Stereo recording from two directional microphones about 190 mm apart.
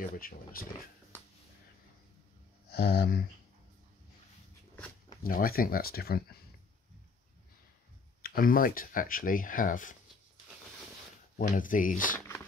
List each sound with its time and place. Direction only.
0.2 s speech: 50° left (ahead or behind)
2.7 s speech: 55° left (ahead or behind)
5.2 s speech: 50° left (ahead or behind)
8.2 s speech: 50° left (ahead or behind)
11.3 s speech: 45° left (ahead or behind)